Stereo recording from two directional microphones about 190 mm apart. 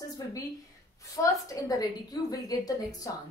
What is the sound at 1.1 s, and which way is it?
A woman's voice, 15° left (ahead or behind).